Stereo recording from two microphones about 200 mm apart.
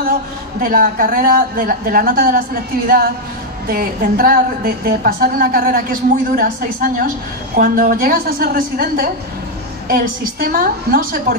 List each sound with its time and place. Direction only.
0.6 s a woman's voice: 45° right (ahead or behind)
3.6 s a woman's voice: 45° right (ahead or behind)